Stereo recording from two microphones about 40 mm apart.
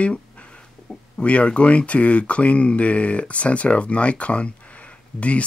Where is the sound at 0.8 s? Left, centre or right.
Left.